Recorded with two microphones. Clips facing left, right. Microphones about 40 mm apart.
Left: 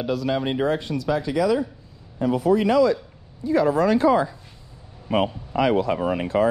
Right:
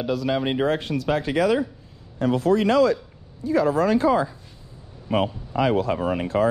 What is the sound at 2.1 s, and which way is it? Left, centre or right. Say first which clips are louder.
Speech: even; right.